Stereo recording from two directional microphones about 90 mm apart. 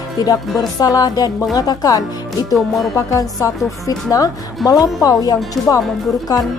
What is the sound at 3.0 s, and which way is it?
A woman's voice, 40° left (ahead or behind).